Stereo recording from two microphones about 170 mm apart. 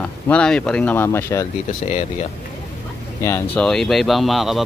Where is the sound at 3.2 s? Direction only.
15° left (ahead or behind).